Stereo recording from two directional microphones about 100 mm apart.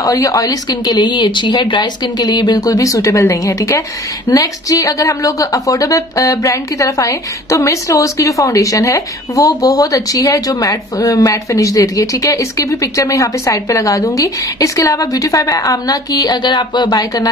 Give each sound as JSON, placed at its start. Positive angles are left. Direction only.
{"t": 0.0, "sound": "speech", "side_deg": 35}